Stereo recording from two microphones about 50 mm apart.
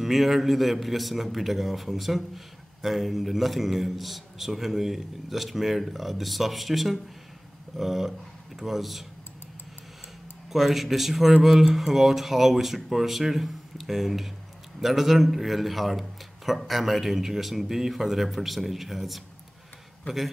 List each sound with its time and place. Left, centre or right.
0.0 s a man's voice: centre
10.5 s a man's voice: centre